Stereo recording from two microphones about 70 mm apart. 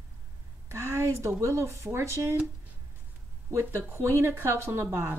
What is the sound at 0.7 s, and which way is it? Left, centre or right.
Speech, right.